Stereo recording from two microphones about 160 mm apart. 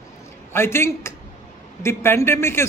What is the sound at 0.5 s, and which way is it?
A man's voice, 15° left (ahead or behind).